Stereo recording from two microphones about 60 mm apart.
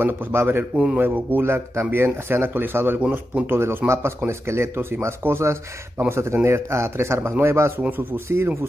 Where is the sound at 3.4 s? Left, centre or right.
Right.